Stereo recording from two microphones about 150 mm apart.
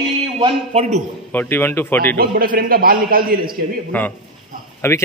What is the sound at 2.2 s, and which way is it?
A man's voice, 85° right.